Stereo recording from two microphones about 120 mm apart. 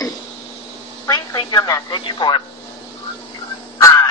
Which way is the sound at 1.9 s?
40° left (ahead or behind).